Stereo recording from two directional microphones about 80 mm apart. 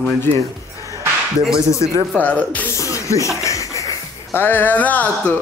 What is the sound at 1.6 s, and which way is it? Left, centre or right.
Music, left.